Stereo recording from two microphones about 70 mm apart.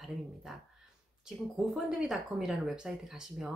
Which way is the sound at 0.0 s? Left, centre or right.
Centre.